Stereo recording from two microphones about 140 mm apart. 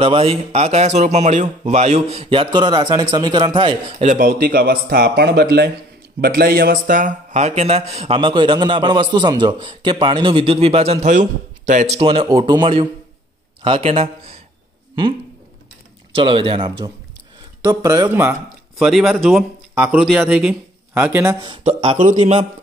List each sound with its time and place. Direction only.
0.0 s speech: 40° right (ahead or behind)
4.0 s a man's voice: 75° right (ahead or behind); by 12.0 s 60° right (ahead or behind)
12.0 s a man's voice: 40° right (ahead or behind)
16.1 s a man's voice: 40° right (ahead or behind)
18.8 s speech: centre (ahead or behind)
19.7 s a man's voice: 10° right (ahead or behind)
21.9 s a man's voice: 55° right (ahead or behind)